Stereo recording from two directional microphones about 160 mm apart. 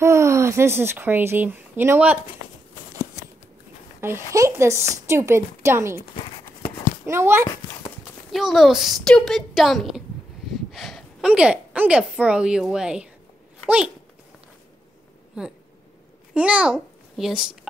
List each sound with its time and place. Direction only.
0.0 s speech: 15° right (ahead or behind)
4.0 s a woman's voice: 15° right (ahead or behind)
7.1 s a woman's voice: 15° right (ahead or behind)
8.3 s a woman's voice: centre (ahead or behind)
16.3 s a child's voice: 5° right (ahead or behind)